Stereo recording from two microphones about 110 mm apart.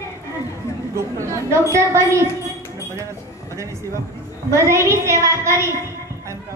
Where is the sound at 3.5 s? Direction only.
30° right (ahead or behind).